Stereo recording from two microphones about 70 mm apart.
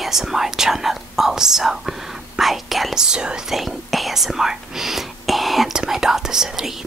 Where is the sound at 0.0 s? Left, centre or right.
Centre.